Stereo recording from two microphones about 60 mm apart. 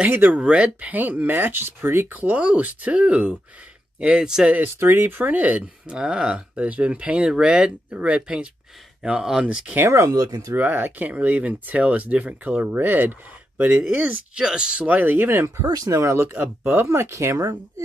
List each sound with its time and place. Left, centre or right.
0.3 s speech: right
2.0 s speech: right; by 4.5 s centre
4.7 s speech: right
5.9 s speech: centre
10.0 s speech: right
10.5 s speech: right
14.3 s speech: centre
14.9 s speech: right
15.6 s speech: right
17.4 s speech: right